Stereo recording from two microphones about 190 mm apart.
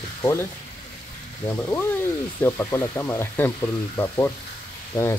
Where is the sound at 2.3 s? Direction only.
10° left (ahead or behind).